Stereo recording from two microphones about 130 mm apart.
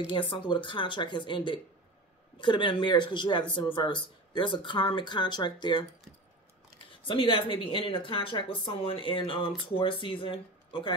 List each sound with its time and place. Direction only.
0.0 s speech: 40° left (ahead or behind)
7.1 s speech: 40° left (ahead or behind)